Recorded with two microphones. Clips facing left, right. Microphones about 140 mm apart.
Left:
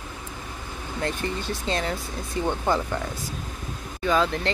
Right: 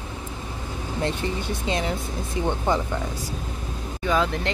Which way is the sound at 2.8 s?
10° right (ahead or behind).